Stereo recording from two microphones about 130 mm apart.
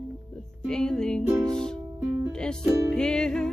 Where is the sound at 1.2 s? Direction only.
20° right (ahead or behind).